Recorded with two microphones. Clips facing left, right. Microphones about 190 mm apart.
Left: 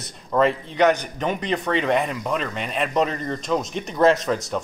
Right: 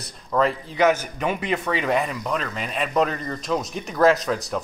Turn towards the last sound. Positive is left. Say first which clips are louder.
# left 1 dB
turn(degrees=0)  # may be behind; listen again after turning